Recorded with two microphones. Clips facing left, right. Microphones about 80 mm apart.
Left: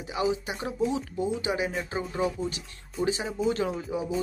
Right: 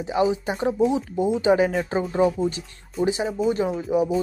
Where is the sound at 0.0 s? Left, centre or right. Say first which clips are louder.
Right 6 dB; right.